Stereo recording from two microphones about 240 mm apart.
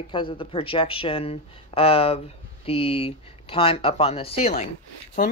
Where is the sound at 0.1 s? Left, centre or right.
Left.